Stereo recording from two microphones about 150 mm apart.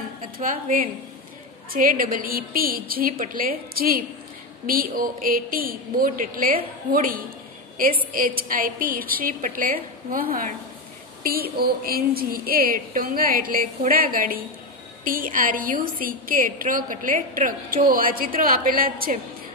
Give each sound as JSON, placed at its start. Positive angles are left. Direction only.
{"t": 0.4, "sound": "a woman's voice", "side_deg": -70}
{"t": 11.2, "sound": "a woman's voice", "side_deg": -90}